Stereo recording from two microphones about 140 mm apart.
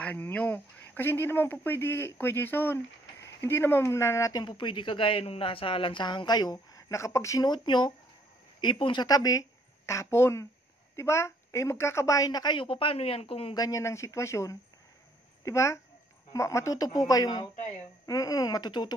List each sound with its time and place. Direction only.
0.0 s a woman's voice: 10° left (ahead or behind); by 13.6 s 45° left (ahead or behind)
13.6 s a woman's voice: 20° left (ahead or behind)